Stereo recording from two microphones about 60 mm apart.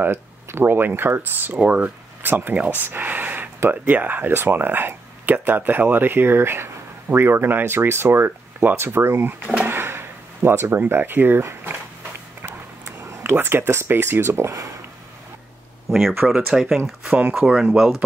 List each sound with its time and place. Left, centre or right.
0.0 s speech: right
1.6 s speech: right
2.2 s speech: right
9.6 s drawer open or close: right
10.8 s speech: right
12.4 s a sound: right
13.2 s speech: right
15.9 s speech: centre